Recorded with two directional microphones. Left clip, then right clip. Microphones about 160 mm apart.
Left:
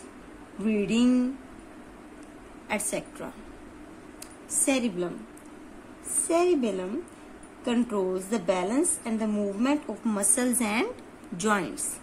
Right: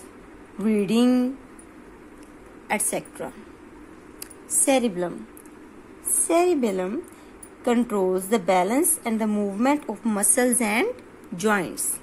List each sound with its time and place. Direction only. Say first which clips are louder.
0.7 s a woman's voice: right 4 dB; 35° right (ahead or behind)
2.7 s a woman's voice: right 4 dB; 30° right (ahead or behind)
4.6 s a woman's voice: right 6 dB; 30° right (ahead or behind)
6.2 s a woman's voice: right 4 dB; 45° right (ahead or behind); by 11.7 s 25° right (ahead or behind)